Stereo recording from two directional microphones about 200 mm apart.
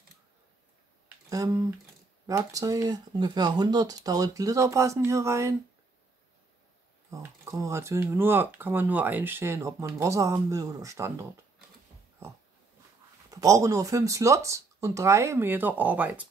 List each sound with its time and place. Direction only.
1.0 s a sound: 15° right (ahead or behind)
2.2 s speech: 15° right (ahead or behind)
7.1 s speech: 15° right (ahead or behind)
13.3 s speech: 15° right (ahead or behind)